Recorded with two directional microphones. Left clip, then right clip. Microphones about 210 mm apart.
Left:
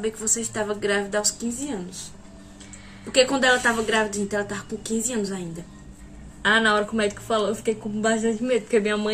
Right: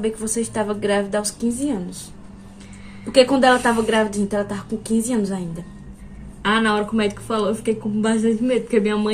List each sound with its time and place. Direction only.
0.0 s a woman's voice: 20° left (ahead or behind)
3.2 s a woman's voice: 20° left (ahead or behind)
6.4 s a woman's voice: 5° right (ahead or behind)